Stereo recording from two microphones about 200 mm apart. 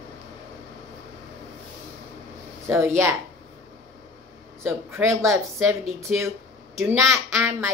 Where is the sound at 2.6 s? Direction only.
15° right (ahead or behind).